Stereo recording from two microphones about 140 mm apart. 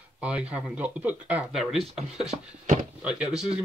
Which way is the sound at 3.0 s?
5° right (ahead or behind).